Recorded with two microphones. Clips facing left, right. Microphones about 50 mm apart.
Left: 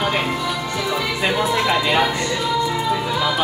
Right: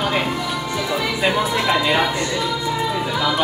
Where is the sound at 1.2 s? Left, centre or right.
Centre.